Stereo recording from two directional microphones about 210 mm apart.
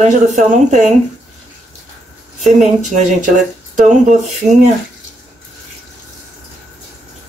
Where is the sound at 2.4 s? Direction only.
Centre (ahead or behind).